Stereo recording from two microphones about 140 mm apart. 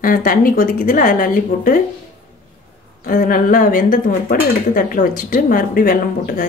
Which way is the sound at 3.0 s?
85° left.